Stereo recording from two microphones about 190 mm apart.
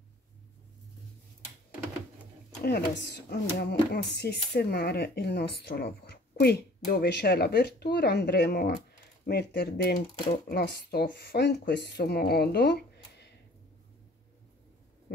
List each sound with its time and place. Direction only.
2.6 s speech: 60° left (ahead or behind)